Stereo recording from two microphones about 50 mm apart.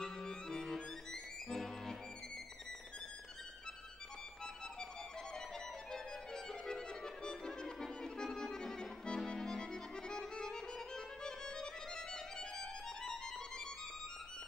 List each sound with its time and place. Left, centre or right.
0.0 s music: centre
5.9 s music: centre
7.2 s accordion: centre
11.2 s music: centre